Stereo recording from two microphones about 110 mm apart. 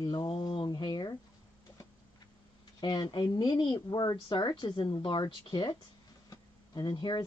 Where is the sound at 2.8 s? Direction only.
40° left (ahead or behind).